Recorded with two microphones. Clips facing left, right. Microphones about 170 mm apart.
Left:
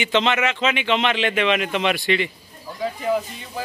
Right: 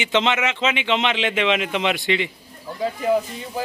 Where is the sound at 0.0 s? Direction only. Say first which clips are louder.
Left 1 dB; 15° right (ahead or behind).